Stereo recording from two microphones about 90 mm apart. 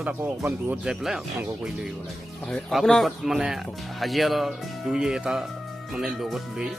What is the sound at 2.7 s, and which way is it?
Speech, centre (ahead or behind).